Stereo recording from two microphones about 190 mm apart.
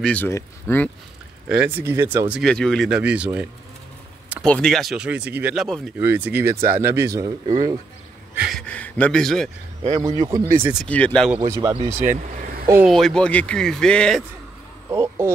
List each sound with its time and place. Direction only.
0.0 s speech: 10° left (ahead or behind)
1.5 s speech: 10° right (ahead or behind)
2.4 s speech: 5° left (ahead or behind); by 7.7 s 25° right (ahead or behind)
8.4 s speech: centre (ahead or behind)
10.1 s speech: 20° right (ahead or behind)
10.6 s speech: 5° right (ahead or behind)
10.9 s speech: 5° left (ahead or behind)
11.2 s speech: 15° right (ahead or behind)
11.7 s speech: 35° right (ahead or behind)
12.8 s speech: centre (ahead or behind)
14.9 s speech: 15° right (ahead or behind)